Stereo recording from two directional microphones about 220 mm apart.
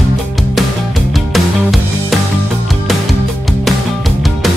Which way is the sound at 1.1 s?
Centre (ahead or behind).